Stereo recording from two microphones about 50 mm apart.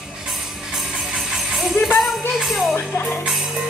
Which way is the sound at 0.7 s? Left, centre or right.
Centre.